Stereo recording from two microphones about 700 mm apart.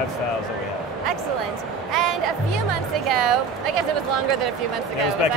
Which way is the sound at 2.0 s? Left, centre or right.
Right.